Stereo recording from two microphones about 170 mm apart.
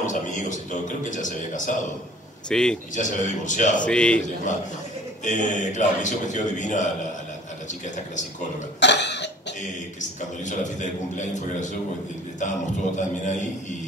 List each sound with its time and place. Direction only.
0.0 s a man's voice: 50° left (ahead or behind)
2.5 s speech: 5° left (ahead or behind)
3.0 s a man's voice: 45° left (ahead or behind)
3.8 s a man's voice: 5° left (ahead or behind)
5.2 s a man's voice: 45° left (ahead or behind)
8.7 s cough: 90° left
10.4 s a man's voice: 45° left (ahead or behind)
12.9 s a man's voice: 45° left (ahead or behind)